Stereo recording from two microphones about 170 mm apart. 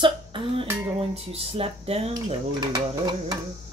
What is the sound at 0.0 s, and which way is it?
Speech, 30° right (ahead or behind).